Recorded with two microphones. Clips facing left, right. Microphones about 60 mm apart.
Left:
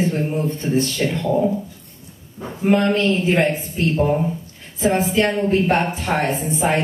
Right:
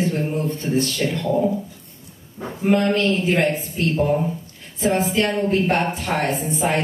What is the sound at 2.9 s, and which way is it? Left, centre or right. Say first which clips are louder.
Speech: left 1 dB; left.